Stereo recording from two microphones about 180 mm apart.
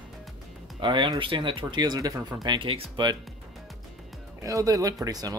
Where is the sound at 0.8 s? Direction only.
25° right (ahead or behind).